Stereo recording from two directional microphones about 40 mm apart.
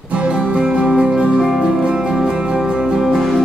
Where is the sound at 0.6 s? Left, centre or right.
Right.